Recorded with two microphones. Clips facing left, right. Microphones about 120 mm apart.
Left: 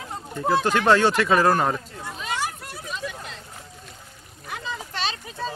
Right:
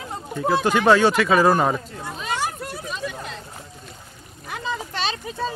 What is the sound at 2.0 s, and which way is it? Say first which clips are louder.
Hubbub: right 2 dB; 30° right (ahead or behind).